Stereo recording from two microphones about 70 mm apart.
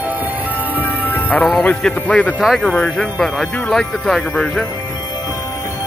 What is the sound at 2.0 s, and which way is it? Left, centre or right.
Speech, centre.